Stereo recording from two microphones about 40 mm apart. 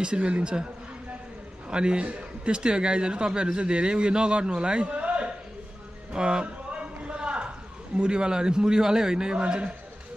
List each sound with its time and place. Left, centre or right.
0.0 s a man's voice: right
1.7 s a man's voice: right
6.1 s a sound: right
8.0 s a man's voice: right